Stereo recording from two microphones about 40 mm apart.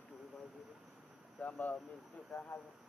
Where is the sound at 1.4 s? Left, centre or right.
Left.